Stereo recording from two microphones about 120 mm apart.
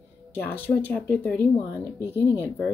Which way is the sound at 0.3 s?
15° left (ahead or behind).